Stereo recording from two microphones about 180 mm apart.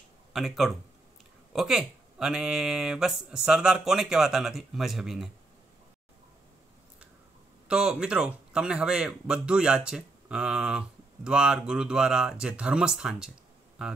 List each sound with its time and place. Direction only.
0.3 s a man's voice: centre (ahead or behind)
7.6 s a man's voice: 5° right (ahead or behind)